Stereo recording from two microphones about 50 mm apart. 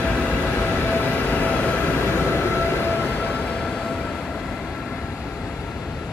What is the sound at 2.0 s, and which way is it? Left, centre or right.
Train, left.